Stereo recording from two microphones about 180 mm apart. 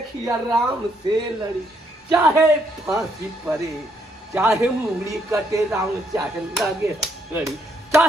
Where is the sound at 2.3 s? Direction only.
15° right (ahead or behind).